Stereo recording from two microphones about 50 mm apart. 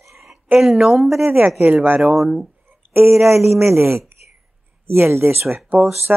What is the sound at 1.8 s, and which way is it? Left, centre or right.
Speech, right.